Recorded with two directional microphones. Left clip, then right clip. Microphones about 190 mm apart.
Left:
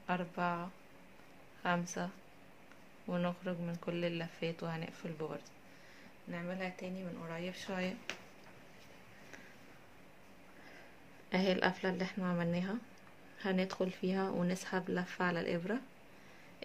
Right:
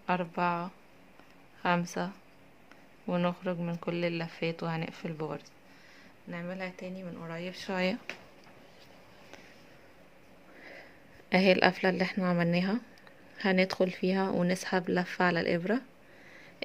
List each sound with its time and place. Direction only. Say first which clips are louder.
0.0 s speech: right 7 dB; 30° right (ahead or behind)
11.2 s speech: right 9 dB; 30° right (ahead or behind)